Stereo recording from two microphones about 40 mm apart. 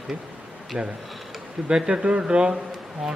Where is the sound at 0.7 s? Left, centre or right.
Right.